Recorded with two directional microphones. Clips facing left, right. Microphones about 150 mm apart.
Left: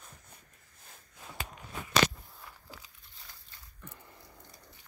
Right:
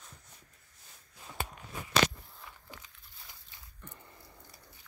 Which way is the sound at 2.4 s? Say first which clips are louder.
Even; centre (ahead or behind).